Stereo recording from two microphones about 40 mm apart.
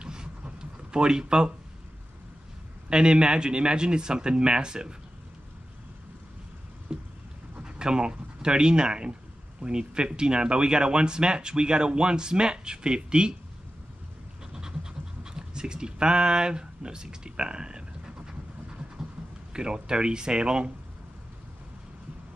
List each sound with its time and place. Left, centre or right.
0.0 s a sound: right
2.9 s speech: right
6.9 s boat: right
7.6 s speech: right
14.4 s pant: centre
19.5 s speech: centre